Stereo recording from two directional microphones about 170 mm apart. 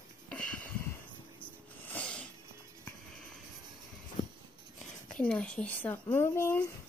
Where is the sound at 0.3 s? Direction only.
5° left (ahead or behind).